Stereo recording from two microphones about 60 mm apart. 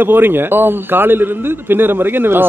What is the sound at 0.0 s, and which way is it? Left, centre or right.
A man's voice, right.